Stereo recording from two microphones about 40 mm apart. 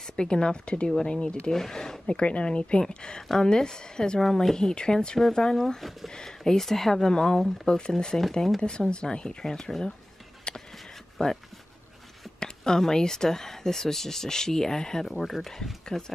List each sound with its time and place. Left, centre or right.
0.1 s a woman's voice: left
1.5 s speech: centre
2.0 s a woman's voice: left
4.2 s speech: centre
5.8 s speech: centre
6.1 s speech: centre
10.5 s a sound: left
11.2 s a woman's voice: left
12.4 s speech: centre